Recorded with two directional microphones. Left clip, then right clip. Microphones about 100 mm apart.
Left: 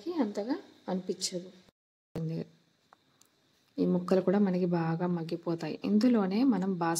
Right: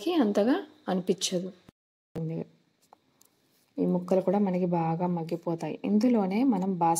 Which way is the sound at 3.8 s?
20° right (ahead or behind).